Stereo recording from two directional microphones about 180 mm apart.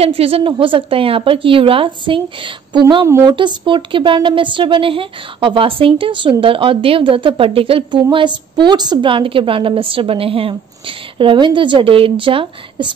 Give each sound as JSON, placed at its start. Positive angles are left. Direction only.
{"t": 0.0, "sound": "speech", "side_deg": -30}
{"t": 3.1, "sound": "speech", "side_deg": -15}
{"t": 3.3, "sound": "speech", "side_deg": -25}